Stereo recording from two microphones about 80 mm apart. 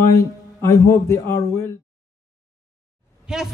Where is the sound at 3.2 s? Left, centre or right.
Centre.